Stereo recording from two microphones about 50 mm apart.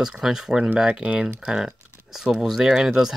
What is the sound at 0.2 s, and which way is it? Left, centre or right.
Speech, centre.